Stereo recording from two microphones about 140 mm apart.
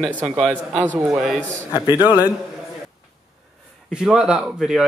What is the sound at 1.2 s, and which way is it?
Speech, centre (ahead or behind).